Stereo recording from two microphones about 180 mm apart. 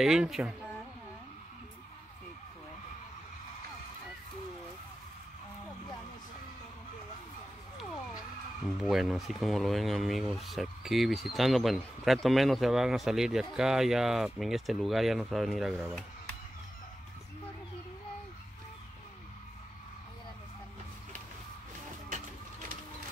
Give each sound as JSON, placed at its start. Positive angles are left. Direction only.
{"t": 0.0, "sound": "speech", "side_deg": 0}
{"t": 8.6, "sound": "speech", "side_deg": 0}
{"t": 22.1, "sound": "a sound", "side_deg": -50}